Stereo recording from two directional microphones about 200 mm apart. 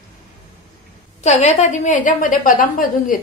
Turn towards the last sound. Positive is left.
turn(degrees=45)  # may be behind; listen again after turning